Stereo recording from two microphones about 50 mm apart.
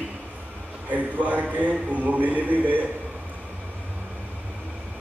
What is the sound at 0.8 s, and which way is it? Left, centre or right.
A man's voice, right.